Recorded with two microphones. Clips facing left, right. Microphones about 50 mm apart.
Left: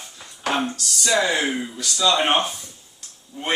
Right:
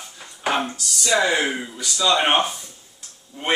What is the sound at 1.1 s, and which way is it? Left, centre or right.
Speech, centre.